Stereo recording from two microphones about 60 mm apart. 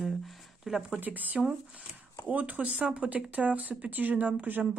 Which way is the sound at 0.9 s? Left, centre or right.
Right.